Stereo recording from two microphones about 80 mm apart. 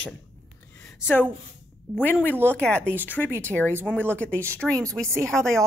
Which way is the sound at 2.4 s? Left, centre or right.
Centre.